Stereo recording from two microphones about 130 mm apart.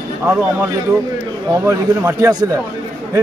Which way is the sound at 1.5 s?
20° right (ahead or behind).